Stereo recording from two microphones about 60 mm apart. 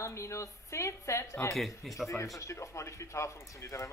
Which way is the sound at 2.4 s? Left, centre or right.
Left.